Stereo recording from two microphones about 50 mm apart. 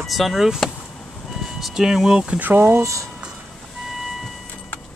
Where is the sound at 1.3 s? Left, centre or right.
Centre.